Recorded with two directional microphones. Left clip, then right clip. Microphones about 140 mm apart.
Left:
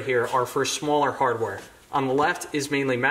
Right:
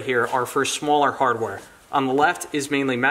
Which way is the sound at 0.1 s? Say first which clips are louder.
Right 2 dB; 35° right (ahead or behind).